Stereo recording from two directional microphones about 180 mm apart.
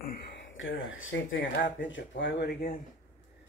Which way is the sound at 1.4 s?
50° left (ahead or behind).